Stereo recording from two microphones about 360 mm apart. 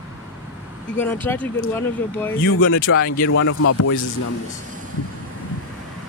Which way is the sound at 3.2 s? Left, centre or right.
Left.